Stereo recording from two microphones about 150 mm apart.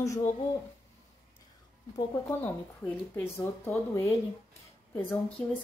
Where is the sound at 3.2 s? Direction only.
15° left (ahead or behind).